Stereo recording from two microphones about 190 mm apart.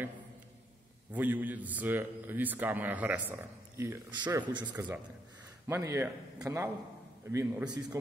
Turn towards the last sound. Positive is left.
turn(degrees=-15)  # may be behind; listen again after turning